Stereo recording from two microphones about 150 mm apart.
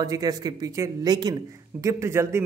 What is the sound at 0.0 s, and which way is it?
Speech, 25° right (ahead or behind).